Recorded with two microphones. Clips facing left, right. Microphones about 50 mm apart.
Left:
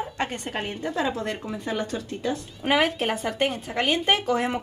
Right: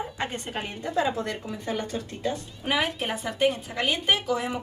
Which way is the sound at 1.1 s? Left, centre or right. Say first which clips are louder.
Left 1 dB; left.